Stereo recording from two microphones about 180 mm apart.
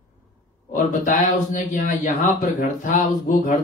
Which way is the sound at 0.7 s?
45° left (ahead or behind).